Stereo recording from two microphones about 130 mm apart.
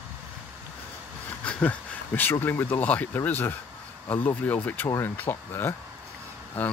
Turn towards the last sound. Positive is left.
turn(degrees=15)  # may be behind; listen again after turning